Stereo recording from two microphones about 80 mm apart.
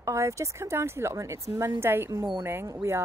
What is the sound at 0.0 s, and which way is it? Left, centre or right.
A woman's voice, right.